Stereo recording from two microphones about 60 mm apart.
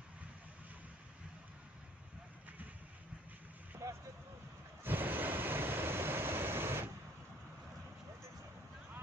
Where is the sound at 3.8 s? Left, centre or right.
Right.